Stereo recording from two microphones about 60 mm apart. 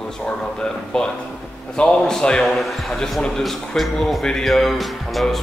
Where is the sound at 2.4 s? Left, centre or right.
Centre.